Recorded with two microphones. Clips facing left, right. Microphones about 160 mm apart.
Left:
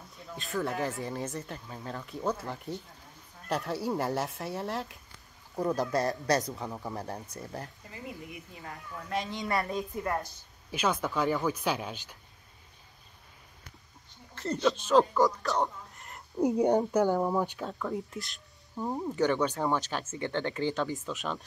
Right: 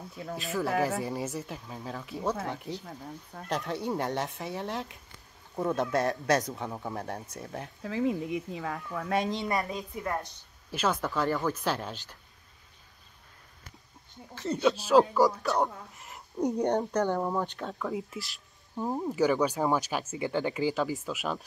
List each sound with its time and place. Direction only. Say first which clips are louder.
0.4 s speech: right 3 dB; 5° right (ahead or behind)
8.5 s speech: right 8 dB; 90° right
9.7 s speech: left 2 dB; centre (ahead or behind)
14.3 s speech: right 2 dB; 5° right (ahead or behind)